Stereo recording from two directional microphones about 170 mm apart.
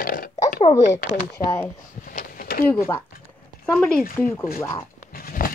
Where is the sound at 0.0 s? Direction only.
55° left (ahead or behind).